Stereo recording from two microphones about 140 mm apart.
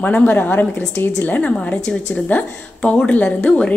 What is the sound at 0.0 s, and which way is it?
A woman's voice, 15° left (ahead or behind).